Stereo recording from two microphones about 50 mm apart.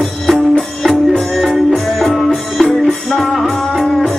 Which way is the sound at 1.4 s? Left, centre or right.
Centre.